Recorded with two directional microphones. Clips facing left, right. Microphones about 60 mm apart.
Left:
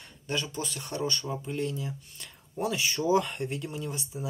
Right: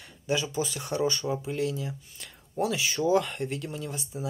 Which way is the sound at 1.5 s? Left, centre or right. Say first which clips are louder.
Right 2 dB; centre.